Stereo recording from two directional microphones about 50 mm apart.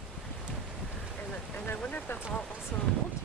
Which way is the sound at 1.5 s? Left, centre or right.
Left.